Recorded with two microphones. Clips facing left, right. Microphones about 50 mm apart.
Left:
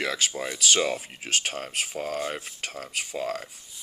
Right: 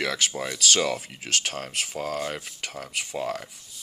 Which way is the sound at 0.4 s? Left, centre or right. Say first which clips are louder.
Even; centre.